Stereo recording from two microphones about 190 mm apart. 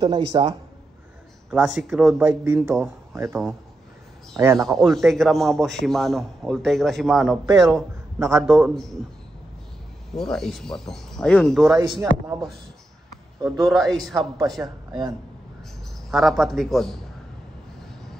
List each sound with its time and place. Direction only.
0.0 s speech: 25° right (ahead or behind)
1.5 s a man's voice: centre (ahead or behind)
4.4 s speech: 15° right (ahead or behind)
4.6 s a man's voice: centre (ahead or behind)
8.2 s speech: 15° right (ahead or behind)
8.5 s a man's voice: centre (ahead or behind)
10.1 s a man's voice: centre (ahead or behind)
13.7 s a man's voice: centre (ahead or behind)
14.6 s speech: 20° right (ahead or behind)
16.1 s a man's voice: centre (ahead or behind)